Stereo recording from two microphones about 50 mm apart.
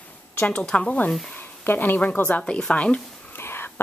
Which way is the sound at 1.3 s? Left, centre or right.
Left.